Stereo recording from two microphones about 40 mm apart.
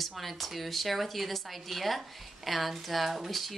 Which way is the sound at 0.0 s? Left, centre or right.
Centre.